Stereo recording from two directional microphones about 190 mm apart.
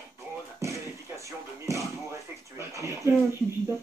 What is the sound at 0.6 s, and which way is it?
Music, 15° right (ahead or behind).